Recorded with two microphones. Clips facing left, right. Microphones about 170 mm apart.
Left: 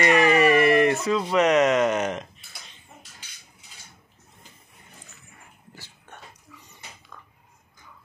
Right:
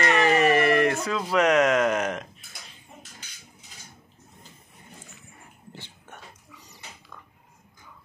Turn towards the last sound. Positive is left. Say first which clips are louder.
# even
turn(degrees=-35)  # may be behind; listen again after turning